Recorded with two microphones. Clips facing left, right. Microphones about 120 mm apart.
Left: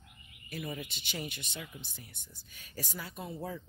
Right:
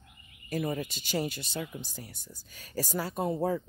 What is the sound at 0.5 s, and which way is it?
Speech, 45° right (ahead or behind).